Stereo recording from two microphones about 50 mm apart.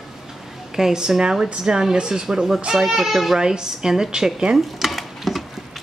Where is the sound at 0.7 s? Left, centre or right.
Centre.